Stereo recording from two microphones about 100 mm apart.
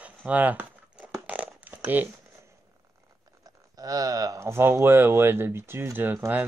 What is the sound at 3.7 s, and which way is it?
Speech, 35° right (ahead or behind).